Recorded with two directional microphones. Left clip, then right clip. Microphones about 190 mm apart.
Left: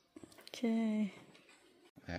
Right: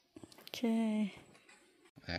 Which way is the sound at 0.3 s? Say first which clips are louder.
Right 1 dB; centre (ahead or behind).